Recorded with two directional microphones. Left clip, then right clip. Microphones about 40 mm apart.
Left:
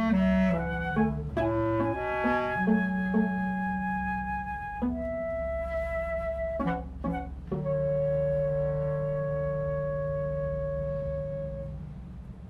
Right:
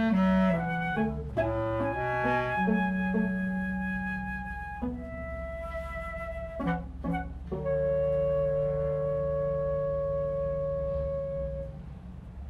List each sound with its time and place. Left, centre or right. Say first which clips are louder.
0.1 s music: even; centre
0.6 s music: left 1 dB; right
1.4 s music: left 2 dB; centre; by 4.2 s right
7.6 s music: right 1 dB; centre